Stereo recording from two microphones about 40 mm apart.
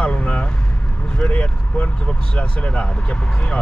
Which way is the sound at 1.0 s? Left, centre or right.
Left.